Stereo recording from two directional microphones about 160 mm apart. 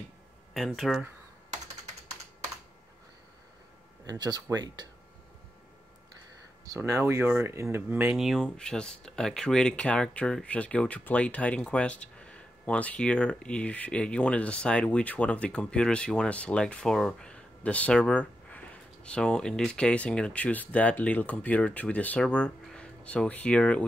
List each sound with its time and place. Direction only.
0.6 s speech: centre (ahead or behind)
4.0 s speech: 25° right (ahead or behind)
6.8 s speech: 15° right (ahead or behind); by 23.8 s 5° left (ahead or behind)